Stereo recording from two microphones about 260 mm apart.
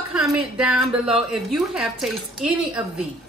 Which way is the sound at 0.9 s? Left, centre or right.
Centre.